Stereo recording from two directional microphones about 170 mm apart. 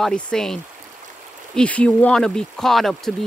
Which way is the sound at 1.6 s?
10° left (ahead or behind).